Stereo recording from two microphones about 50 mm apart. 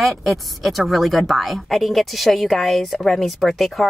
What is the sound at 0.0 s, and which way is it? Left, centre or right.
A woman's voice, centre.